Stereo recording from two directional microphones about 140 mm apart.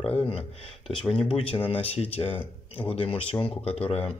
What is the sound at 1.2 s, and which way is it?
Speech, 40° left (ahead or behind).